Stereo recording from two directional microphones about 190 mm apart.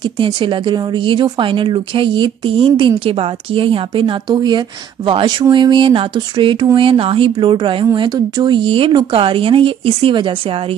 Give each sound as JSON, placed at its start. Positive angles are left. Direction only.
{"t": 0.2, "sound": "a woman's voice", "side_deg": -25}